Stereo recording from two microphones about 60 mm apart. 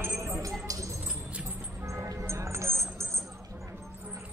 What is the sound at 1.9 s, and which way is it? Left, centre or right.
Music, right.